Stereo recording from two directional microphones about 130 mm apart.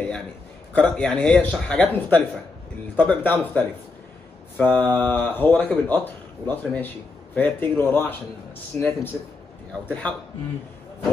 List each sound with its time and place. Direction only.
0.7 s speech: 10° left (ahead or behind)